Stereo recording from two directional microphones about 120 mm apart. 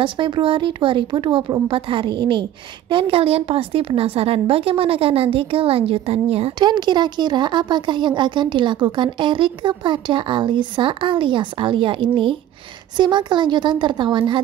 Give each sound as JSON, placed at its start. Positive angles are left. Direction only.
{"t": 0.0, "sound": "a woman's voice", "side_deg": -45}
{"t": 6.6, "sound": "speech", "side_deg": -40}